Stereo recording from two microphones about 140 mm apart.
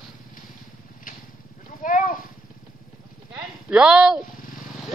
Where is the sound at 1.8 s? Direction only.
70° left (ahead or behind).